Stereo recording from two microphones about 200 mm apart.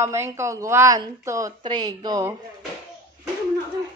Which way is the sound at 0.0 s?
15° right (ahead or behind).